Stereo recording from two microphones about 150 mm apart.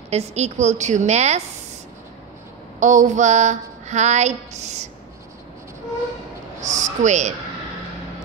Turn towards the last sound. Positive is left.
turn(degrees=-50)  # may be behind; listen again after turning